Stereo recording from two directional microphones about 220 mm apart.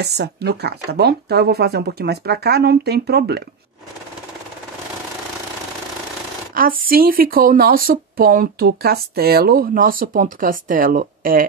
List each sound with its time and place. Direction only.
0.0 s speech: 50° right (ahead or behind)
6.5 s speech: 40° right (ahead or behind)